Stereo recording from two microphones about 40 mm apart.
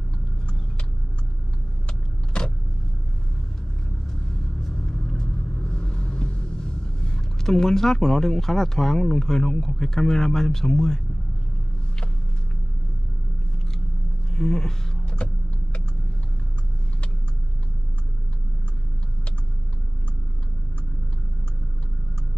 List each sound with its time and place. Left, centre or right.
4.6 s vehicle: centre
14.3 s speech: centre
15.2 s vehicle: left